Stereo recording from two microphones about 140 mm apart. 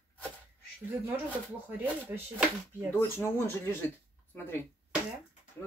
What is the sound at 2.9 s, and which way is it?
Speech, 15° left (ahead or behind).